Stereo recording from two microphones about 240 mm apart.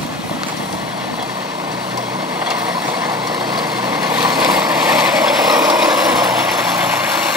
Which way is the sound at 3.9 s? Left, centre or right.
Centre.